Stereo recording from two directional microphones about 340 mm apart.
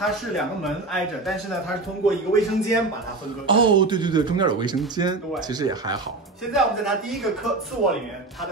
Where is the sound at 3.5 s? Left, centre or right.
Centre.